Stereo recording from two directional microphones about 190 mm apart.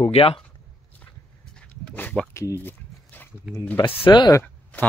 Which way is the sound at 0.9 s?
5° left (ahead or behind).